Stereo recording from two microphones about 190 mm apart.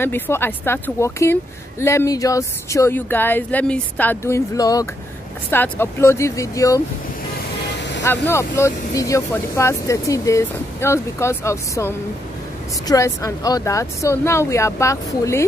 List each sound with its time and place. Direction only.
0.0 s speech: 10° left (ahead or behind)
8.3 s speech: 15° left (ahead or behind)